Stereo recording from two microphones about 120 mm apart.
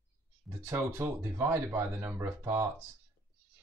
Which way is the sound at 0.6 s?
20° right (ahead or behind).